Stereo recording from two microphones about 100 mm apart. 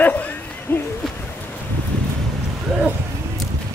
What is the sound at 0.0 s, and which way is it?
Hoot, 15° left (ahead or behind).